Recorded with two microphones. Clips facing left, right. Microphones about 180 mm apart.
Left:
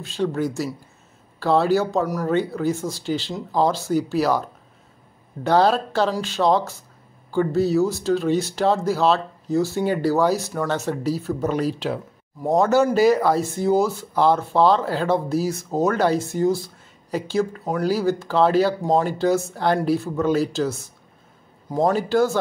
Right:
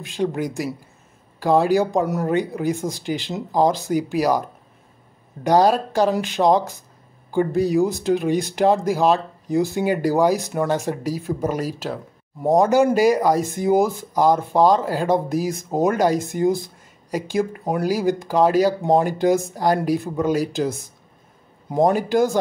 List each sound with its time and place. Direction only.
0.0 s speech: 15° right (ahead or behind)